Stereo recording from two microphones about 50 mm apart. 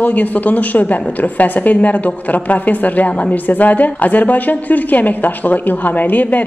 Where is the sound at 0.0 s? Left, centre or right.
Left.